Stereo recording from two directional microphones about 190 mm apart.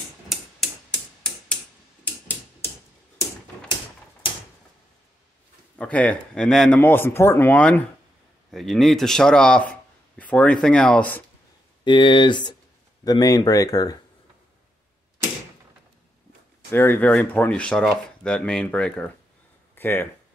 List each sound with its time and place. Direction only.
0.3 s tick-tock: centre (ahead or behind)
2.0 s a sound: 10° left (ahead or behind)
5.8 s a man's voice: 5° left (ahead or behind)
11.8 s speech: 25° left (ahead or behind)
16.7 s speech: 10° left (ahead or behind)
19.7 s a sound: 10° left (ahead or behind)